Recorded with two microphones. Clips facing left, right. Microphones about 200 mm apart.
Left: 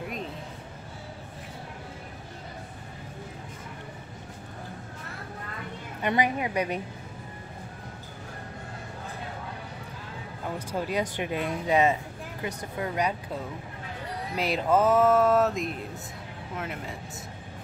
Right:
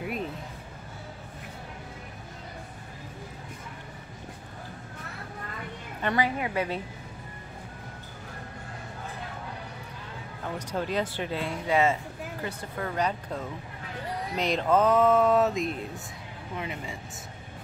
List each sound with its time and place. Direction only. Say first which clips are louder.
6.0 s speech: left 1 dB; 20° left (ahead or behind)
10.7 s speech: even; 10° left (ahead or behind)
14.3 s a sound: even; 5° left (ahead or behind)